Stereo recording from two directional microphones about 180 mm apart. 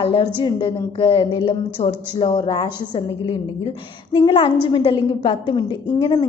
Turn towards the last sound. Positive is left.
turn(degrees=25)  # may be behind; listen again after turning